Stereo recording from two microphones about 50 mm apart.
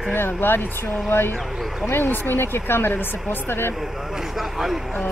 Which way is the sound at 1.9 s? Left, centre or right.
Left.